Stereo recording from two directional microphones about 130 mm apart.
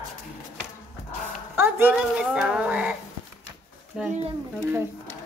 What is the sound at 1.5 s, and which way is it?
Speech, 15° right (ahead or behind).